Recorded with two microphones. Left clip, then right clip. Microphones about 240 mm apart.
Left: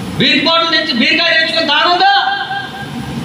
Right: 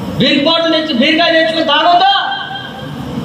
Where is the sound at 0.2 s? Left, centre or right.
Left.